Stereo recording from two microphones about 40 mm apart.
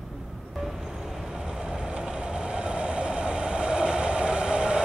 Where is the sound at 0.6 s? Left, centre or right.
Centre; by 4.7 s right.